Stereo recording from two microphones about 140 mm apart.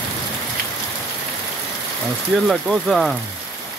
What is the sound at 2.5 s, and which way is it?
Speech, centre (ahead or behind).